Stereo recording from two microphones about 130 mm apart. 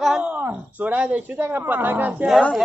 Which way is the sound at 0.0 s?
5° right (ahead or behind).